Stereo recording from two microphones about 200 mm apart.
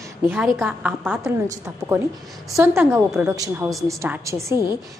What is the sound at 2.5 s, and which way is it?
A woman's voice, 10° right (ahead or behind).